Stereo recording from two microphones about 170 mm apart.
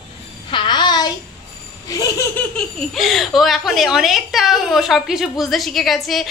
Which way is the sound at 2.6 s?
Centre (ahead or behind).